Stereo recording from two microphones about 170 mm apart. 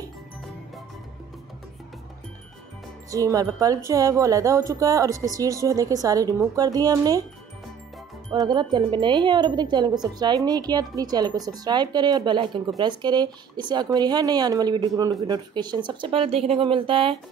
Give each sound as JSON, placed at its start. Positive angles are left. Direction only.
{"t": 3.1, "sound": "speech", "side_deg": -20}
{"t": 8.3, "sound": "speech", "side_deg": -25}